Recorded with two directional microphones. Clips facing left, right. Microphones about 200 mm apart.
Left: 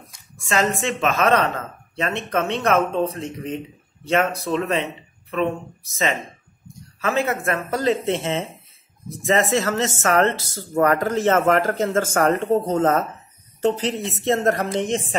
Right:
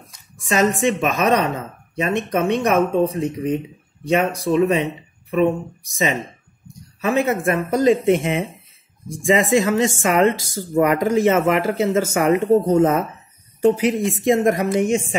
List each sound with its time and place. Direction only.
0.4 s speech: 15° right (ahead or behind)